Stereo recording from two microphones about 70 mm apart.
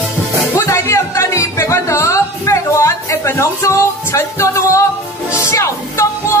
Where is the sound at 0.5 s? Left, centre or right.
Left.